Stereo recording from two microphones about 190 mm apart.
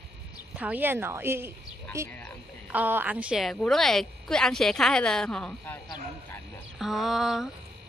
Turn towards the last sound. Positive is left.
turn(degrees=0)  # may be behind; listen again after turning